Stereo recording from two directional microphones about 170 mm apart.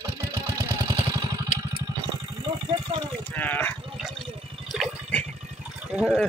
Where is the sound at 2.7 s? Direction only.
25° right (ahead or behind).